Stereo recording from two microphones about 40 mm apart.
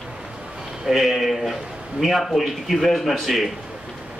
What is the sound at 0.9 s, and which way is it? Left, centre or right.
A man's voice, centre.